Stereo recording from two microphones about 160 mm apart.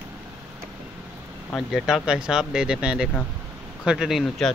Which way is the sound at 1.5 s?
Centre (ahead or behind).